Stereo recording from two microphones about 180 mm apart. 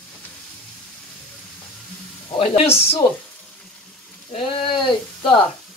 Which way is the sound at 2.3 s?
35° left (ahead or behind).